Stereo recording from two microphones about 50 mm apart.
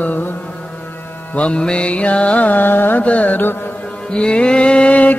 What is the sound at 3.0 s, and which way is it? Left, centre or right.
Music, left.